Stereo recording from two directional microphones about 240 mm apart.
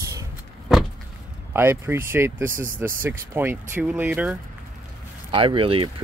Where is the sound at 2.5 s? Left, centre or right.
Right.